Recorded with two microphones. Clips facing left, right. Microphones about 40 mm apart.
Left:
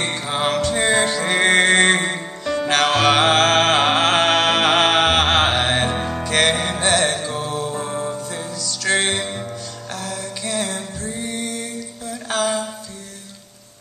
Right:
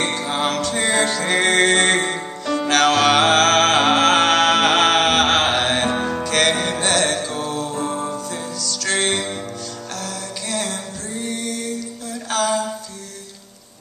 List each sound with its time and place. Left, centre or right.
0.0 s music: centre
2.4 s music: centre
2.7 s music: centre
12.3 s a sound: centre